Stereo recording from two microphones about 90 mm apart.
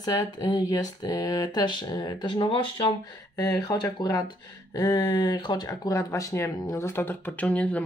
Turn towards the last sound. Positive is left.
turn(degrees=15)  # may be behind; listen again after turning